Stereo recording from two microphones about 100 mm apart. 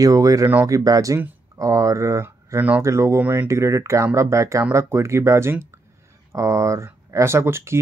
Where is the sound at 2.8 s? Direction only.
30° right (ahead or behind).